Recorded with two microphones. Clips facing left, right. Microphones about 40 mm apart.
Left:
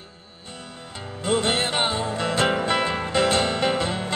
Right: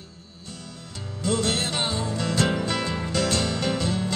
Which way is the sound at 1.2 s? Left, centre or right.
Left.